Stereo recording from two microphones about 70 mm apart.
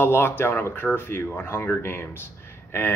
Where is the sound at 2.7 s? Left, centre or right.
Left.